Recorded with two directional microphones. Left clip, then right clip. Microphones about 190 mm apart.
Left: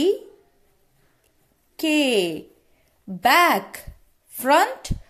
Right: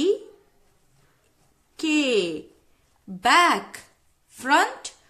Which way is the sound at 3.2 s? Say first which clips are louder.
Left 1 dB; 20° left (ahead or behind).